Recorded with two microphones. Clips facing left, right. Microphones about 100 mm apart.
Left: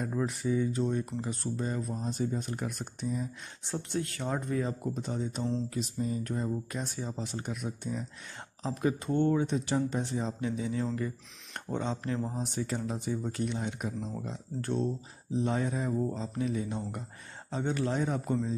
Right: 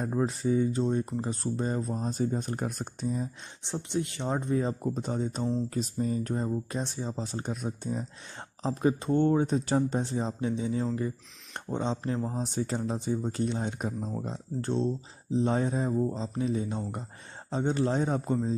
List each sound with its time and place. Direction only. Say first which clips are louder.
0.0 s speech: right 3 dB; 30° right (ahead or behind)
3.6 s speech: right 2 dB; 20° right (ahead or behind)
15.9 s speech: right 3 dB; 15° right (ahead or behind)
16.2 s speech: right 2 dB; 30° right (ahead or behind)